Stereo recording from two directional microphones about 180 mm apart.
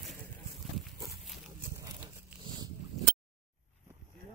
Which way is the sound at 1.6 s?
20° right (ahead or behind).